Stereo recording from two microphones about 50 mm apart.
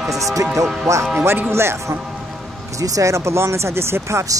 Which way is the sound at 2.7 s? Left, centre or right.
Right.